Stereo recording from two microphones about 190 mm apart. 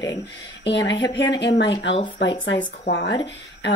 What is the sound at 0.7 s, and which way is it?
Speech, 65° left (ahead or behind).